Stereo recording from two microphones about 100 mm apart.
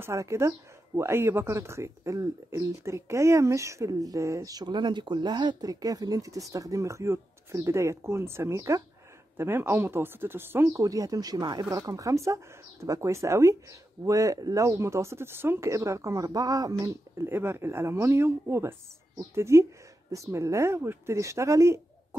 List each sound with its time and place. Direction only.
0.0 s speech: 30° right (ahead or behind)
10.8 s speech: 35° right (ahead or behind)